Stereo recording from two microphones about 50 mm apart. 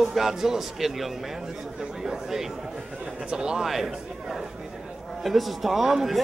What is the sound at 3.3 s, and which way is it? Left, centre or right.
Speech, centre.